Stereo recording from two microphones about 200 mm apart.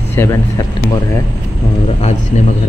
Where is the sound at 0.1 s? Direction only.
10° left (ahead or behind).